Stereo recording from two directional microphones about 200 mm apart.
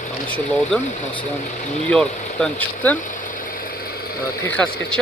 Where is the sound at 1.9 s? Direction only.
5° left (ahead or behind).